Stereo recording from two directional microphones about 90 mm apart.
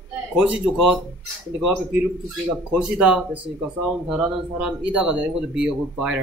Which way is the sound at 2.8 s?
10° right (ahead or behind).